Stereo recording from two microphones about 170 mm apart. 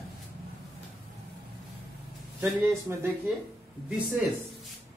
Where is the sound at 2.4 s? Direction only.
15° right (ahead or behind).